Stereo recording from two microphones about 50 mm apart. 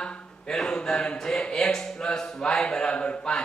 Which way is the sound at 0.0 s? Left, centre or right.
Centre.